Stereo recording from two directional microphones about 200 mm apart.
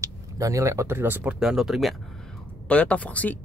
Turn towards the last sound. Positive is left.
turn(degrees=5)  # may be behind; listen again after turning